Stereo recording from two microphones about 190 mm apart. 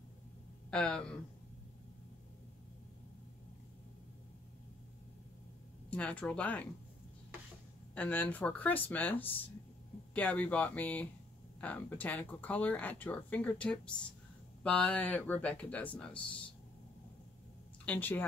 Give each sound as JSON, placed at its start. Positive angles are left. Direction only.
{"t": 0.7, "sound": "speech", "side_deg": 5}
{"t": 5.9, "sound": "speech", "side_deg": 5}
{"t": 7.9, "sound": "speech", "side_deg": 10}
{"t": 17.8, "sound": "speech", "side_deg": 10}